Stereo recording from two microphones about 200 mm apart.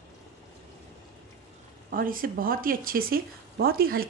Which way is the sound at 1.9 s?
45° right (ahead or behind).